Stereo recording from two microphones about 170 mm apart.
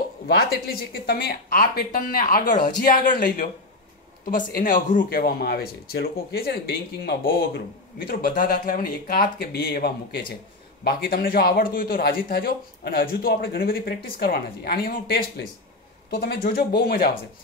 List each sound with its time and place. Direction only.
0.4 s a man's voice: 65° left (ahead or behind)